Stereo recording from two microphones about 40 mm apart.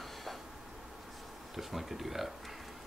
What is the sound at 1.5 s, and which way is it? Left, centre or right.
Speech, centre.